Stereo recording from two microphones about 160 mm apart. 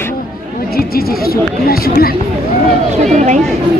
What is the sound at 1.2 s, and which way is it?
Speech, 70° left (ahead or behind).